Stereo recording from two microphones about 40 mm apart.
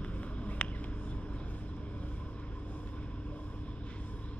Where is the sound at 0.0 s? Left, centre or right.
Left.